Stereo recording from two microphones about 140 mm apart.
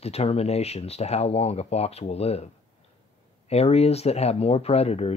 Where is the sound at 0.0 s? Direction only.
45° left (ahead or behind).